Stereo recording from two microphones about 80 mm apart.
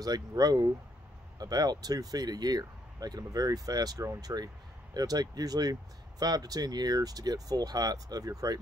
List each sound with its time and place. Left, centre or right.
0.0 s speech: right